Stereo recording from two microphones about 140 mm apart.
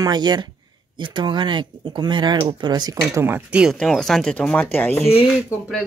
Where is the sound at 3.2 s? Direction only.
10° right (ahead or behind).